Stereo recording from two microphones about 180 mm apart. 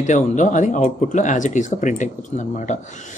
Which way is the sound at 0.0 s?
45° left (ahead or behind).